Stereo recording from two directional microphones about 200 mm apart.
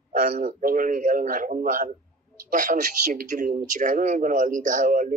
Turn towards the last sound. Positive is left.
turn(degrees=-40)  # may be behind; listen again after turning